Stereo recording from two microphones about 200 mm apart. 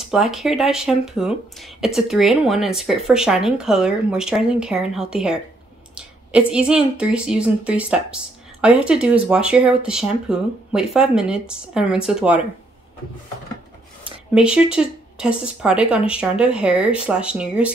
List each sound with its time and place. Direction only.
0.0 s a woman's voice: centre (ahead or behind)
14.3 s a woman's voice: 5° right (ahead or behind)